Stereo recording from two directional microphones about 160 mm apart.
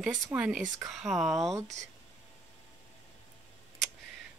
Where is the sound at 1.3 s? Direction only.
20° right (ahead or behind).